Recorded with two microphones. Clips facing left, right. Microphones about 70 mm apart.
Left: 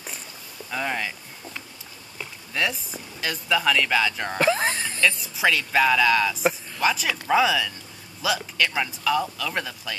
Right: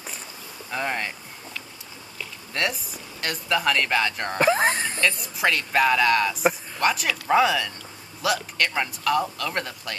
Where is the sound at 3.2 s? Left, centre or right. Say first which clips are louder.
Left 1 dB; centre.